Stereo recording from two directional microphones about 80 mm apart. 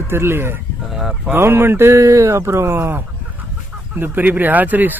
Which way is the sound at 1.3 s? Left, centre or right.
Right.